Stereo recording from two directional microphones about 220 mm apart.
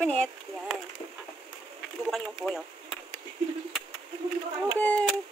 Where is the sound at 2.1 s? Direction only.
Centre (ahead or behind).